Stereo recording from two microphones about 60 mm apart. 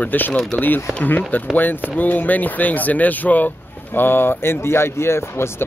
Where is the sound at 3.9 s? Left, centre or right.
Left.